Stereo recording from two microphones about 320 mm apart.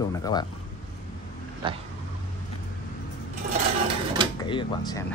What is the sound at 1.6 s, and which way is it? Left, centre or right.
Vehicle, centre.